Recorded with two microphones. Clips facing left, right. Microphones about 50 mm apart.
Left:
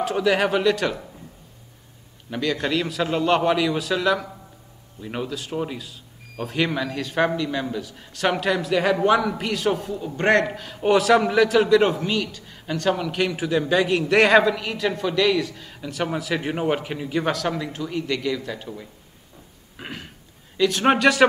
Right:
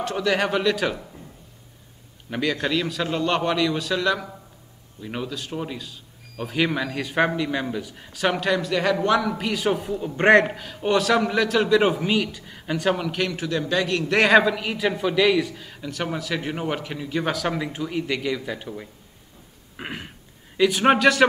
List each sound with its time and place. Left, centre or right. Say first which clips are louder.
0.0 s a man's voice: left 2 dB; centre
2.5 s a man's voice: left 1 dB; centre
9.3 s a man's voice: even; centre
10.1 s a man's voice: right 3 dB; right
10.5 s a man's voice: left 3 dB; centre
12.0 s a man's voice: right 2 dB; centre
13.3 s a man's voice: left 3 dB; centre
14.0 s a man's voice: even; centre
17.2 s a man's voice: even; centre
19.8 s a sound: right 2 dB; centre
20.5 s a man's voice: right 1 dB; centre